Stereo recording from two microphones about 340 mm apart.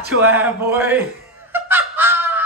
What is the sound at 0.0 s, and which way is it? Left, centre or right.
Speech, right.